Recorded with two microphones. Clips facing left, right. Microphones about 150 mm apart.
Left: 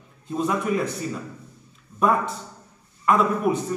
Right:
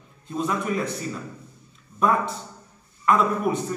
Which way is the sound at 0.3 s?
5° left (ahead or behind).